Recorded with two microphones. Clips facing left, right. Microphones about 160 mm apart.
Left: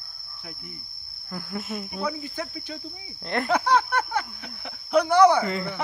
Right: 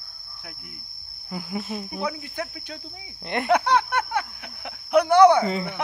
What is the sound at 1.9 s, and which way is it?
Speech, 10° right (ahead or behind).